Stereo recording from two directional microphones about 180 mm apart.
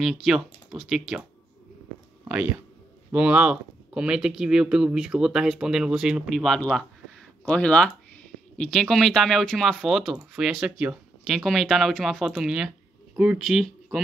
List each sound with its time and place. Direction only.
0.0 s speech: centre (ahead or behind)
2.2 s speech: 10° right (ahead or behind)